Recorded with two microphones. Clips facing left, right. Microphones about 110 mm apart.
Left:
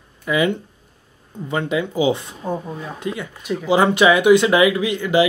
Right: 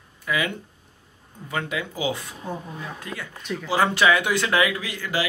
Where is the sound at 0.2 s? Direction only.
25° left (ahead or behind).